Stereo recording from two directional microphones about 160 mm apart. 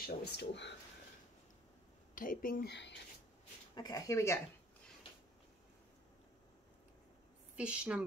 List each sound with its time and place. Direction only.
0.0 s speech: 90° left
2.1 s speech: 60° left (ahead or behind); by 2.9 s 90° left
3.7 s speech: 25° left (ahead or behind)
7.5 s a woman's voice: 5° right (ahead or behind)